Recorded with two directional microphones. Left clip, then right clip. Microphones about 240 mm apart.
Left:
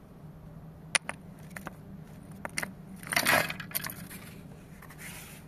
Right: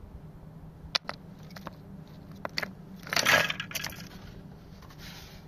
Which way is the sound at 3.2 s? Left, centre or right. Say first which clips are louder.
Right 4 dB; right.